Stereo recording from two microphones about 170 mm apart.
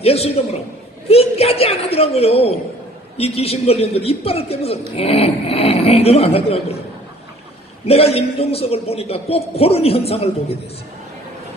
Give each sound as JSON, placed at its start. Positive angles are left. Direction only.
{"t": 0.0, "sound": "speech", "side_deg": 35}
{"t": 7.8, "sound": "speech", "side_deg": 35}